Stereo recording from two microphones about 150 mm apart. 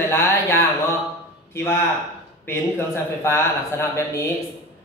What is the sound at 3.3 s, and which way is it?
Speech, 15° left (ahead or behind).